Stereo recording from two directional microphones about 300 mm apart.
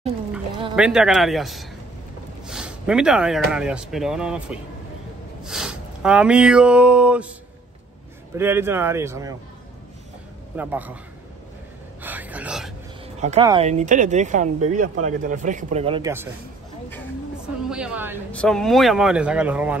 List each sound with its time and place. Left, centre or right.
0.7 s speech: centre
8.4 s speech: centre
10.5 s speech: centre
12.0 s a sound: centre
13.0 s speech: right
17.6 s speech: centre